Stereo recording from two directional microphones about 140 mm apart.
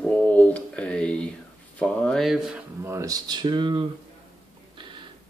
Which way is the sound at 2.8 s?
25° right (ahead or behind).